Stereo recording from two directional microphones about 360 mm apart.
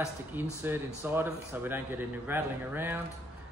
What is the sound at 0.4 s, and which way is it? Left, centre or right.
Speech, centre.